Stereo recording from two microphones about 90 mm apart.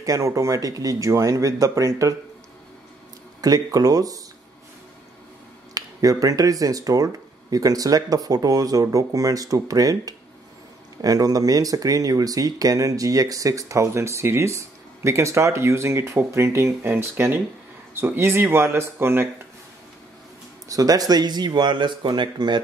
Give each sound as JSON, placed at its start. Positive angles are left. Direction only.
{"t": 0.0, "sound": "speech", "side_deg": -35}
{"t": 3.3, "sound": "speech", "side_deg": -45}
{"t": 5.8, "sound": "speech", "side_deg": -40}
{"t": 20.6, "sound": "speech", "side_deg": -40}